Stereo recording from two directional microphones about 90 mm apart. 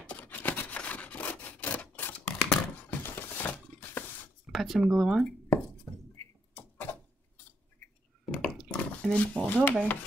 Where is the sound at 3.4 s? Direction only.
20° left (ahead or behind).